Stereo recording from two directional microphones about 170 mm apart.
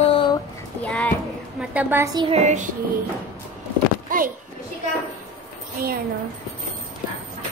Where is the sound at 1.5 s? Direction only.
10° right (ahead or behind).